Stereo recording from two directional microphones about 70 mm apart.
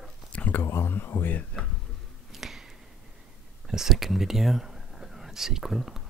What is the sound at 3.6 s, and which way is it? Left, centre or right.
Speech, centre.